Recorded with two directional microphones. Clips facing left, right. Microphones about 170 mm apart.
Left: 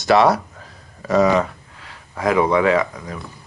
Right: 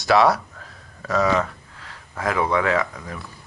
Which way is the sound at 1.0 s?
20° left (ahead or behind).